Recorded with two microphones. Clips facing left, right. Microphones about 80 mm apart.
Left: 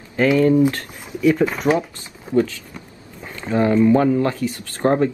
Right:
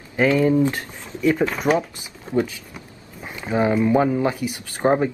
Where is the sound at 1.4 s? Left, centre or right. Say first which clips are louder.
Left 2 dB; centre.